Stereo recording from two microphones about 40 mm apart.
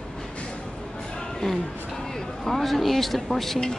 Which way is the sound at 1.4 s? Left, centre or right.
Centre.